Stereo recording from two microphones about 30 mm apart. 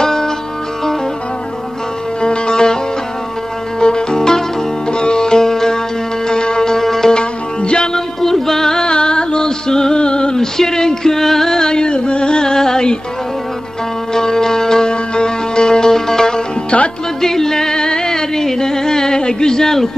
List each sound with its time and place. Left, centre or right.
0.0 s music: centre
2.2 s music: left
3.8 s music: left
6.2 s music: left
7.2 s music: left
8.2 s music: centre
8.8 s music: left
9.9 s a sound: left
10.3 s music: centre
14.1 s music: centre
16.7 s music: left
17.2 s music: centre